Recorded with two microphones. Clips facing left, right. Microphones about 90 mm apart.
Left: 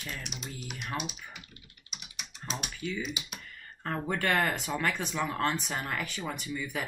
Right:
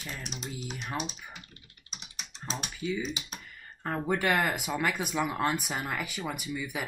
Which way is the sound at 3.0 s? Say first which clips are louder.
Right 2 dB; 35° right (ahead or behind).